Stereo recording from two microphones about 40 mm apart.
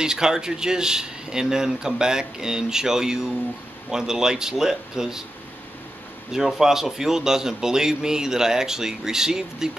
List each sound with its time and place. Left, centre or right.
0.0 s a man's voice: centre
6.3 s a man's voice: centre